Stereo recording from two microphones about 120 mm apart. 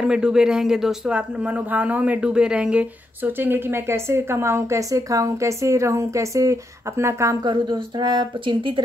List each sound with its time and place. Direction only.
0.0 s speech: 5° right (ahead or behind); by 7.3 s 25° right (ahead or behind)
7.4 s speech: 40° right (ahead or behind)